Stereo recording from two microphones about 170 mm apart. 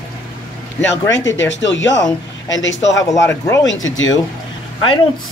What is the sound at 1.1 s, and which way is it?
Speech, 90° left.